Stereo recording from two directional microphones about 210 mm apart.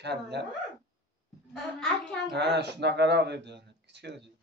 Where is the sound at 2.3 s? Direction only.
55° right (ahead or behind).